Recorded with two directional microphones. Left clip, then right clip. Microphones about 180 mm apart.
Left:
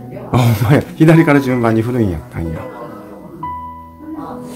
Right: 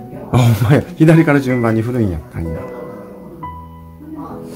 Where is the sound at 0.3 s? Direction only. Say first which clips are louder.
Left 1 dB; centre (ahead or behind).